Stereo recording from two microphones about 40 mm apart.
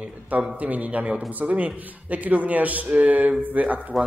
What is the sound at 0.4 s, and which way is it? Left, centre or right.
A man's voice, right.